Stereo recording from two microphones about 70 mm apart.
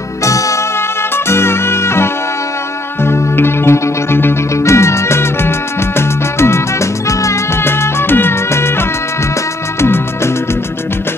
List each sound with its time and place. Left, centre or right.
0.2 s music: left
0.7 s music: left
7.6 s music: left